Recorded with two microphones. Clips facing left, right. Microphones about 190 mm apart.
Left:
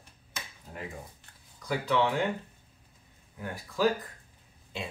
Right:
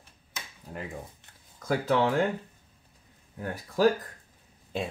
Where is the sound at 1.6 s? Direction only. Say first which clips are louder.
Right 3 dB; 45° right (ahead or behind).